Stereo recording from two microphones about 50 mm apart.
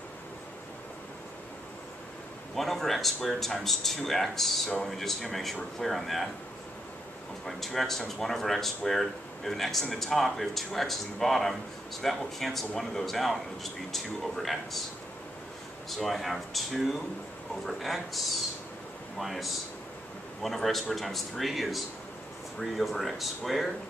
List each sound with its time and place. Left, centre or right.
2.5 s speech: centre
7.4 s speech: centre
15.9 s speech: centre